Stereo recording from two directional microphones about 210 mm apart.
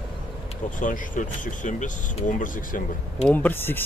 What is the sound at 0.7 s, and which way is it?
Speech, 40° left (ahead or behind).